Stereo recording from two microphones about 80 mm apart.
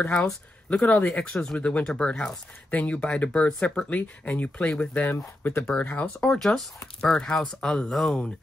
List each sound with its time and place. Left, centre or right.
0.2 s speech: centre
6.2 s speech: centre